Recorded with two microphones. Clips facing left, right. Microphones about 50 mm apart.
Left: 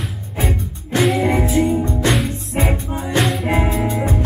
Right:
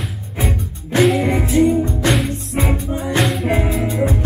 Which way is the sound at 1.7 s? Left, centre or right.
Left.